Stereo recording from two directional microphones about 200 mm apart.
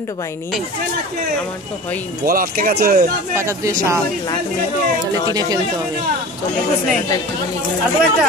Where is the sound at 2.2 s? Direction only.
45° right (ahead or behind).